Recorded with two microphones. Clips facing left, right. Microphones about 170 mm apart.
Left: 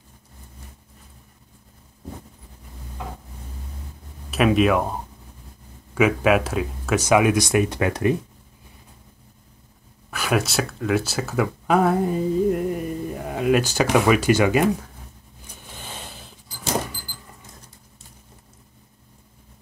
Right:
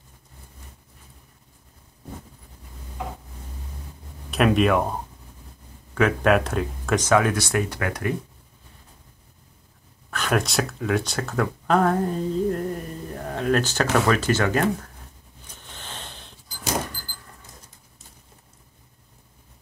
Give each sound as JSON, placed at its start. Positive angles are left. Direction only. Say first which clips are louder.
{"t": 4.3, "sound": "speech", "louder": "left 1 dB", "side_deg": 0}
{"t": 10.1, "sound": "speech", "louder": "left 1 dB", "side_deg": 5}
{"t": 15.4, "sound": "a sound", "louder": "left 2 dB", "side_deg": 10}